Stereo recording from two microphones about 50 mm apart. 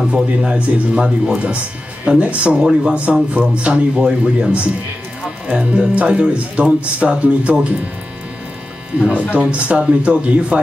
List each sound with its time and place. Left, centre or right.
0.1 s speech: centre
1.3 s speech: right
9.3 s speech: right